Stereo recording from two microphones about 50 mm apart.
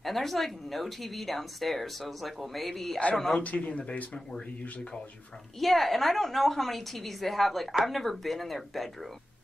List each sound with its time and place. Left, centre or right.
0.0 s a woman's voice: centre
3.3 s a man's voice: left
5.6 s a woman's voice: centre